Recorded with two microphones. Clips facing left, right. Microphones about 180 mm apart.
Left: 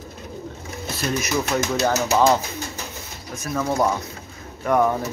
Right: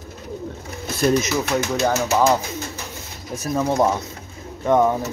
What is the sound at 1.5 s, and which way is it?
Speech, centre (ahead or behind).